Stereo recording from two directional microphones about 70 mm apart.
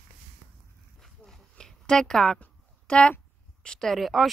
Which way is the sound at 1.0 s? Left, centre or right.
Centre.